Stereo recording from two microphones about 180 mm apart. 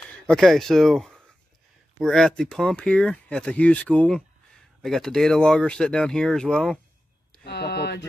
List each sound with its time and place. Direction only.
0.3 s speech: centre (ahead or behind)
7.4 s speech: 70° left (ahead or behind)